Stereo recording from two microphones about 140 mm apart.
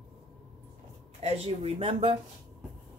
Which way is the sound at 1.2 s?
45° right (ahead or behind).